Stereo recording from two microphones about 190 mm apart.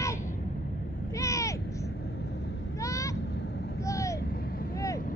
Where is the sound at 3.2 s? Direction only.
65° left (ahead or behind).